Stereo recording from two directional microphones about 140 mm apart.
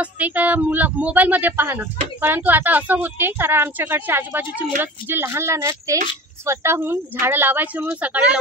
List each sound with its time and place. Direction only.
0.0 s speech: 10° right (ahead or behind)